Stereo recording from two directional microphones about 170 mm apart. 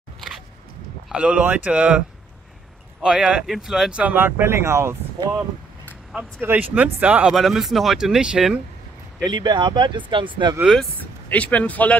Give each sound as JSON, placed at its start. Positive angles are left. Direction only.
{"t": 1.0, "sound": "speech", "side_deg": -5}
{"t": 6.1, "sound": "speech", "side_deg": -10}
{"t": 9.2, "sound": "speech", "side_deg": -25}
{"t": 10.7, "sound": "speech", "side_deg": 5}